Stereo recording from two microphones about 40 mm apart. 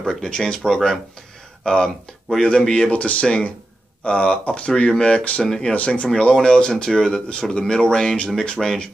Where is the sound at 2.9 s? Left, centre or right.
Left.